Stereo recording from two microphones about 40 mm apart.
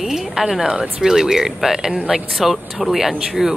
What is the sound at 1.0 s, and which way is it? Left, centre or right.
Speech, centre.